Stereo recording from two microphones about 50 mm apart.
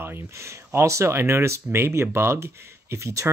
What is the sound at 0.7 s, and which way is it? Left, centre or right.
Speech, right.